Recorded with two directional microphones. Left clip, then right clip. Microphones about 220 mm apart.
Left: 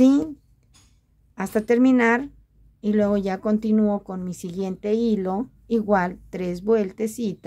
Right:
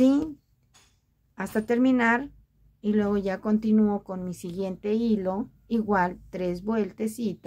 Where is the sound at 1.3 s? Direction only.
25° left (ahead or behind).